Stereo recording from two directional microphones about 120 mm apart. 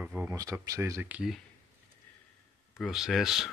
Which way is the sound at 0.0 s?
10° right (ahead or behind).